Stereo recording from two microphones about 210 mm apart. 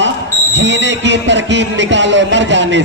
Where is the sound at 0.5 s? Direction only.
60° right (ahead or behind).